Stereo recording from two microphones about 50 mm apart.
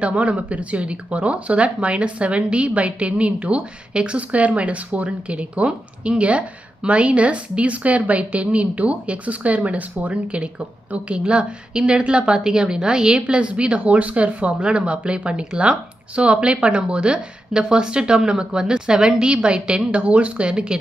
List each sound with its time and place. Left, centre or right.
0.0 s speech: right